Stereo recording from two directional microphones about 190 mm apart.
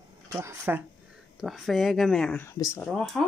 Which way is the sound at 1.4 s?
Centre (ahead or behind).